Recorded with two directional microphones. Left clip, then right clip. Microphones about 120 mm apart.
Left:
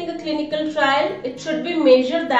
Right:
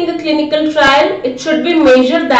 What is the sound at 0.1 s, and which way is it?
A woman's voice, 5° right (ahead or behind).